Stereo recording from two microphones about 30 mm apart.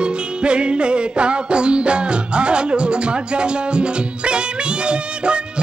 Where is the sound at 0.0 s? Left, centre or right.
Right.